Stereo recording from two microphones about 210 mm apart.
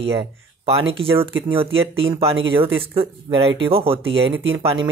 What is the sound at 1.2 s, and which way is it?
Speech, 25° right (ahead or behind).